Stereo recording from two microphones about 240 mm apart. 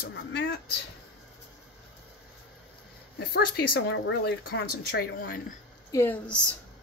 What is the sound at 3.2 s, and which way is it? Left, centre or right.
Speech, left.